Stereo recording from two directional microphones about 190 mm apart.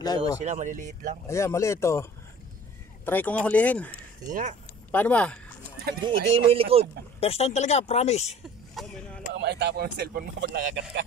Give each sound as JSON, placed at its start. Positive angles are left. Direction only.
{"t": 0.4, "sound": "speech", "side_deg": -40}
{"t": 1.2, "sound": "speech", "side_deg": 15}
{"t": 3.1, "sound": "speech", "side_deg": 10}
{"t": 4.3, "sound": "speech", "side_deg": -45}
{"t": 4.9, "sound": "speech", "side_deg": 10}
{"t": 5.9, "sound": "speech", "side_deg": -25}
{"t": 7.2, "sound": "speech", "side_deg": 30}
{"t": 8.7, "sound": "a sound", "side_deg": 5}
{"t": 9.3, "sound": "speech", "side_deg": -60}